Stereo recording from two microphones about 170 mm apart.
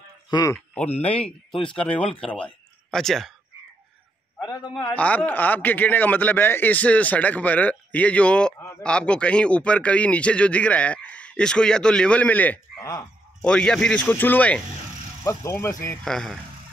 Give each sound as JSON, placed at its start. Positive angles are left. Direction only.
{"t": 0.3, "sound": "speech", "side_deg": 20}
{"t": 1.6, "sound": "speech", "side_deg": 30}
{"t": 2.1, "sound": "speech", "side_deg": 5}
{"t": 4.4, "sound": "a man's voice", "side_deg": 25}
{"t": 4.9, "sound": "a man's voice", "side_deg": 10}
{"t": 12.7, "sound": "speech", "side_deg": 25}
{"t": 13.4, "sound": "a man's voice", "side_deg": 5}
{"t": 16.0, "sound": "speech", "side_deg": 5}